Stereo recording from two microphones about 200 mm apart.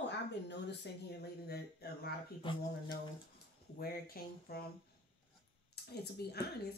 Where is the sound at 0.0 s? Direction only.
60° left (ahead or behind).